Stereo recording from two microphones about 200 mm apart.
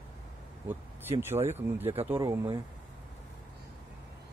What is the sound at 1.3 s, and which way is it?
Speech, 10° right (ahead or behind).